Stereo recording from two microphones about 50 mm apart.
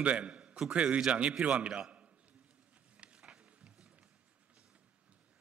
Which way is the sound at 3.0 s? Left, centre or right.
Right.